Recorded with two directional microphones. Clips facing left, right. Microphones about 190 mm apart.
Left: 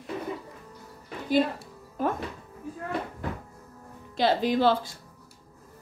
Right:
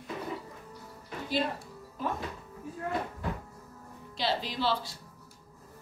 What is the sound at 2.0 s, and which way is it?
Speech, 50° left (ahead or behind).